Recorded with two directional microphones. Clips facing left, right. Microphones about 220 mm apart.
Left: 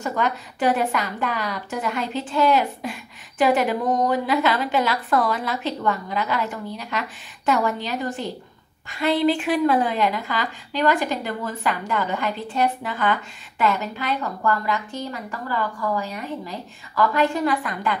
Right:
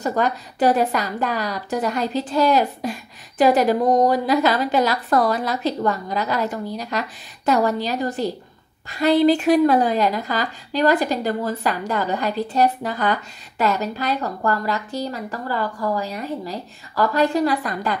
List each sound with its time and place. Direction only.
0.0 s a woman's voice: 35° right (ahead or behind)